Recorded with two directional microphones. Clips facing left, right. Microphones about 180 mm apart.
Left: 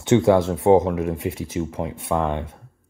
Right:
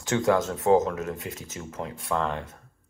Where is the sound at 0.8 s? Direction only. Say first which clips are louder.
Left 7 dB; 15° left (ahead or behind).